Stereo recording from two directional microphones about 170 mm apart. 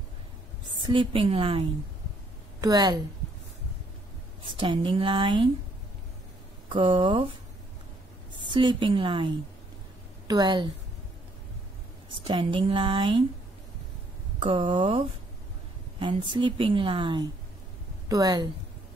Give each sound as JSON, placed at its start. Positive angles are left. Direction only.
{"t": 0.8, "sound": "speech", "side_deg": -30}
{"t": 2.6, "sound": "a woman's voice", "side_deg": -25}
{"t": 4.4, "sound": "a woman's voice", "side_deg": -30}
{"t": 6.7, "sound": "a woman's voice", "side_deg": -30}
{"t": 8.5, "sound": "a woman's voice", "side_deg": -30}
{"t": 12.3, "sound": "speech", "side_deg": -30}
{"t": 14.4, "sound": "a woman's voice", "side_deg": -30}